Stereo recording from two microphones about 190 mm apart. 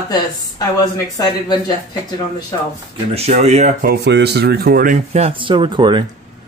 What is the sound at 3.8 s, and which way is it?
Speech, 60° right (ahead or behind).